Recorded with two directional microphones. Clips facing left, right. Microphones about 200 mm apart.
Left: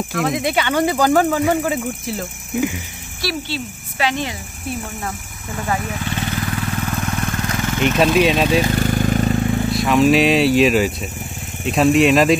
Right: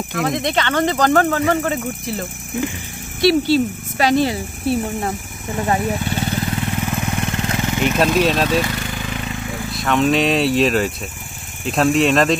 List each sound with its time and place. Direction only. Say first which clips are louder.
0.1 s speech: even; centre (ahead or behind)
3.4 s cricket: right 11 dB; 40° right (ahead or behind); by 7.8 s 20° right (ahead or behind)
7.8 s speech: left 2 dB; centre (ahead or behind)
8.5 s a sound: left 3 dB; 35° left (ahead or behind)
9.8 s speech: left 2 dB; centre (ahead or behind)